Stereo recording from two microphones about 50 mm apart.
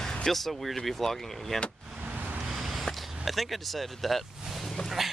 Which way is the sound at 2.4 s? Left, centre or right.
Centre.